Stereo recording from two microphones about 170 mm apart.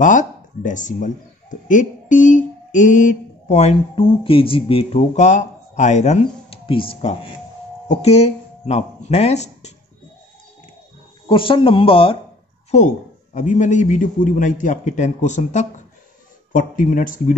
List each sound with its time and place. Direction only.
0.0 s speech: 50° left (ahead or behind)
11.2 s speech: 30° left (ahead or behind)
12.7 s a man's voice: 45° left (ahead or behind)